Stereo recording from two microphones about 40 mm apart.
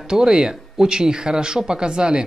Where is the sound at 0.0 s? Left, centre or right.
Centre.